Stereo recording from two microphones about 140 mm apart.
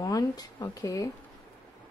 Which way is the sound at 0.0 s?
30° left (ahead or behind).